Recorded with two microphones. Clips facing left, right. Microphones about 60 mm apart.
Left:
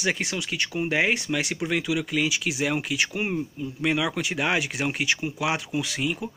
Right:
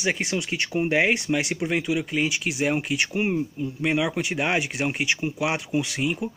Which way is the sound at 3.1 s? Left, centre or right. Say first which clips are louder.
Right 3 dB; centre.